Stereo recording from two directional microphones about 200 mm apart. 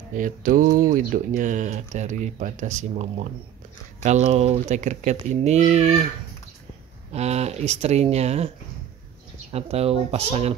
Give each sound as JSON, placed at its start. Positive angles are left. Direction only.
{"t": 0.2, "sound": "speech", "side_deg": -40}
{"t": 7.1, "sound": "speech", "side_deg": -35}
{"t": 9.5, "sound": "speech", "side_deg": -30}